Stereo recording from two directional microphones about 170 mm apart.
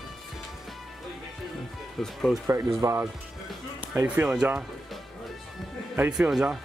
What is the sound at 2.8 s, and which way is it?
Speech, 20° right (ahead or behind).